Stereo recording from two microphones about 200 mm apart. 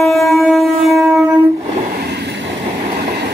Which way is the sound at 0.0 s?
Centre (ahead or behind).